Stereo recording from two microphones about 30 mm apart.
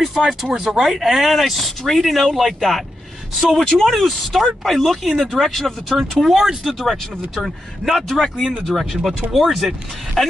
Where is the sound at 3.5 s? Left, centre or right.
Centre.